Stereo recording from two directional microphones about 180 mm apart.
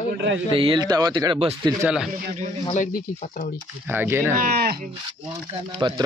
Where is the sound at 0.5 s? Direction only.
30° right (ahead or behind).